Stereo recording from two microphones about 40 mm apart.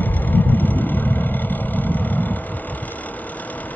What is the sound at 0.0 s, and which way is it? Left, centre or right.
Vehicle, left.